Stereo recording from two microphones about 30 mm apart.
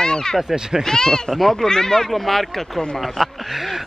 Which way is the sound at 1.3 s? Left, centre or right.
Centre.